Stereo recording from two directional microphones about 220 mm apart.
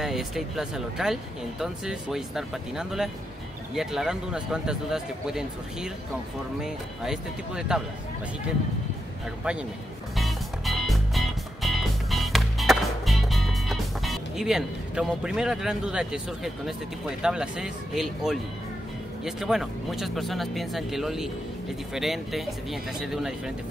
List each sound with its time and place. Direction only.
0.0 s speech: centre (ahead or behind)
9.4 s speech: 5° right (ahead or behind)
10.1 s music: centre (ahead or behind)
17.2 s speech: 5° right (ahead or behind)